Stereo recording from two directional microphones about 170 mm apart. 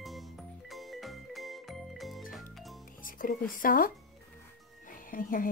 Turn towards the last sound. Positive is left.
turn(degrees=55)  # may be behind; listen again after turning